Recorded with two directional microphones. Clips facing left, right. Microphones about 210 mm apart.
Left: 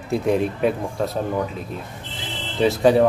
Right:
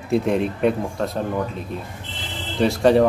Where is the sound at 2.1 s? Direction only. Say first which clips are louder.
Right 1 dB; centre (ahead or behind).